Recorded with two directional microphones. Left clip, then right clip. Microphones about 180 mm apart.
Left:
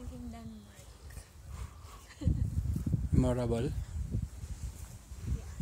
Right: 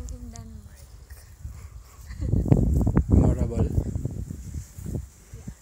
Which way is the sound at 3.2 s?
10° left (ahead or behind).